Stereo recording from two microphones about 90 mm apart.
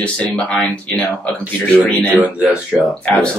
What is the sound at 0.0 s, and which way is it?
Speech, 10° left (ahead or behind).